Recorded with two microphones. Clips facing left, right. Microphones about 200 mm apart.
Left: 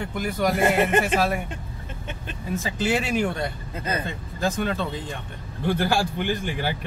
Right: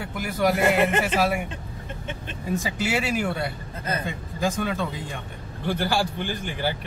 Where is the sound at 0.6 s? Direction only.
50° left (ahead or behind).